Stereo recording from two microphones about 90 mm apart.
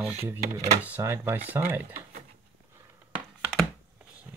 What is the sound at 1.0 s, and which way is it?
Speech, 25° right (ahead or behind).